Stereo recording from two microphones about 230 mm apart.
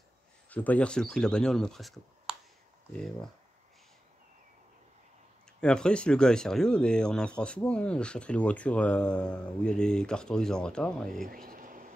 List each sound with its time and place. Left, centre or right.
0.5 s speech: centre
5.6 s speech: centre
11.2 s a sound: right